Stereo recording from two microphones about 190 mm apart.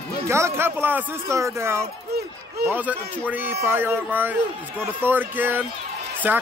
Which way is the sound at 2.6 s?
10° right (ahead or behind).